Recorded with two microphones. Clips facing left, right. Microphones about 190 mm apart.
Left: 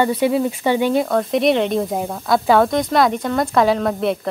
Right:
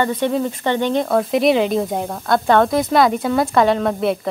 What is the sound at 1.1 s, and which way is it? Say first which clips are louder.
Speech: right 1 dB; centre (ahead or behind).